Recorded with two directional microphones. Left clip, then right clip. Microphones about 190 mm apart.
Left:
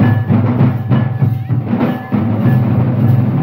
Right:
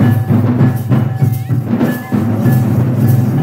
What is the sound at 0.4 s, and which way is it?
Music, 35° left (ahead or behind).